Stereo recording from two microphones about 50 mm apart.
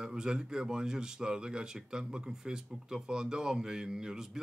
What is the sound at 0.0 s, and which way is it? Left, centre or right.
Speech, centre.